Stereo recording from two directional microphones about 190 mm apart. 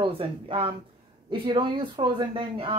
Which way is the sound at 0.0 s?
30° right (ahead or behind).